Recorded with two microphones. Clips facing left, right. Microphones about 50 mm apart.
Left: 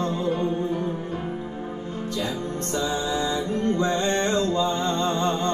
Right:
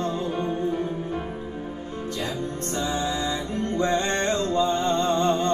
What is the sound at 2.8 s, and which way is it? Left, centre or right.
Music, left.